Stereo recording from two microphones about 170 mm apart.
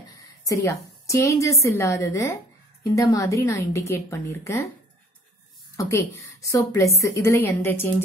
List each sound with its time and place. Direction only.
0.5 s a woman's voice: 20° left (ahead or behind)
5.8 s a woman's voice: 15° left (ahead or behind)